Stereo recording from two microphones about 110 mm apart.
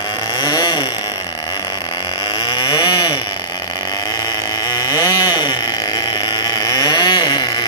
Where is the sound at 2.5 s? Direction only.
40° left (ahead or behind).